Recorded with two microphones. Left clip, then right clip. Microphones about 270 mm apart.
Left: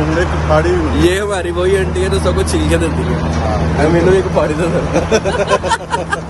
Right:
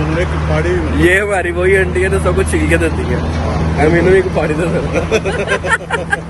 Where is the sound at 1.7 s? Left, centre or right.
Left.